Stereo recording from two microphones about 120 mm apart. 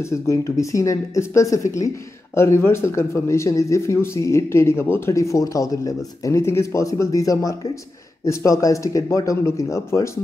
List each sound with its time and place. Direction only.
0.0 s speech: 25° left (ahead or behind)